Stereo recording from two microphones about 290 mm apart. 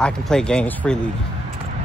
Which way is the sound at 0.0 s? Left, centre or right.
Centre.